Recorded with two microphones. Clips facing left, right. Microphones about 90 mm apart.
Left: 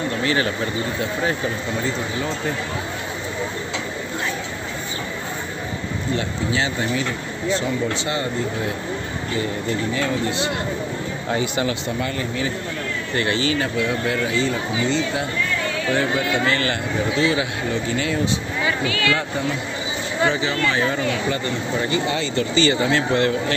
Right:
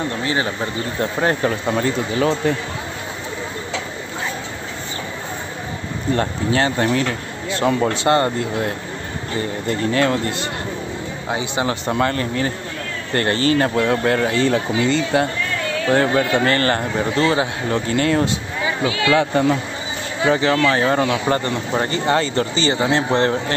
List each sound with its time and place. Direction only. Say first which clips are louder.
0.2 s speech: left 2 dB; 25° right (ahead or behind)
1.2 s speech: right 7 dB; 60° right (ahead or behind); by 2.5 s 80° right
6.1 s speech: right 5 dB; 50° right (ahead or behind)
11.2 s speech: even; 20° right (ahead or behind)
11.9 s speech: right 5 dB; 60° right (ahead or behind)
15.9 s speech: right 5 dB; 50° right (ahead or behind)
18.7 s speech: right 3 dB; 25° right (ahead or behind)
20.2 s speech: right 7 dB; 55° right (ahead or behind); by 23.3 s 30° right (ahead or behind)